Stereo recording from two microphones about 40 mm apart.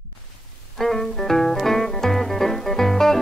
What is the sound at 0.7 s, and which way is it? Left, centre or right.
Music, centre.